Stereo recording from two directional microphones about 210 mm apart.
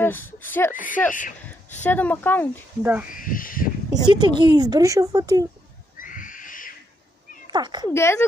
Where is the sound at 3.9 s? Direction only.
20° right (ahead or behind).